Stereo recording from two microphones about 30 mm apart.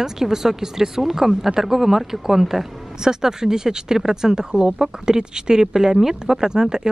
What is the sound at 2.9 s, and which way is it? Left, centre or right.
Speech, right.